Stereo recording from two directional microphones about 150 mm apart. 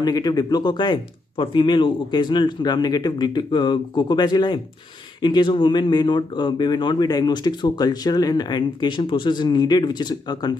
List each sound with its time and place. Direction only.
0.0 s speech: 25° left (ahead or behind)